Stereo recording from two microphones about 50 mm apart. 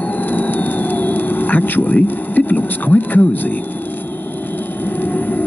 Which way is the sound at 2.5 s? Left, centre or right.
Left.